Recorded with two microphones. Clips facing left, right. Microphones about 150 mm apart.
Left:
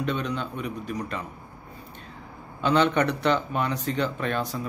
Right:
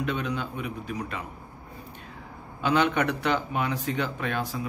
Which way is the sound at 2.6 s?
10° right (ahead or behind).